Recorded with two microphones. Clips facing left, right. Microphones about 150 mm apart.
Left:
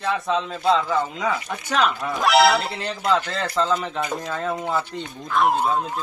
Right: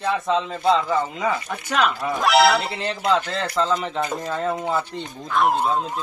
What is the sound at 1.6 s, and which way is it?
A man's voice, 5° right (ahead or behind).